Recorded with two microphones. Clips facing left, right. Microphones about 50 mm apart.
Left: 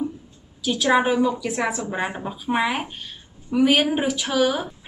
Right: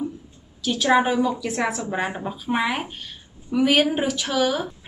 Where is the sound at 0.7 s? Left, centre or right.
Centre.